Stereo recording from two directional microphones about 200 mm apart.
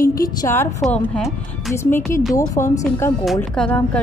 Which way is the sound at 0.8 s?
Centre (ahead or behind).